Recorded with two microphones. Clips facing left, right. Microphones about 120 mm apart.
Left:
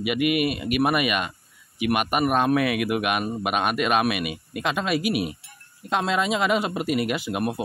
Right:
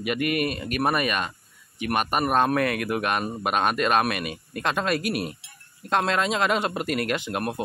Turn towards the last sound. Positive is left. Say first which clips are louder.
# left 1 dB
turn(degrees=5)  # may be behind; listen again after turning